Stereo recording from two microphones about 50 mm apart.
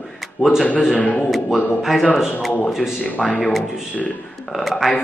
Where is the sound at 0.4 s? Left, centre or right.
Centre.